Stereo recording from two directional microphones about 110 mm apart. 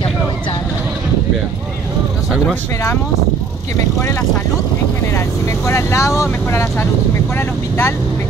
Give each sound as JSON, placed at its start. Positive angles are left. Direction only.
{"t": 5.7, "sound": "speech", "side_deg": 25}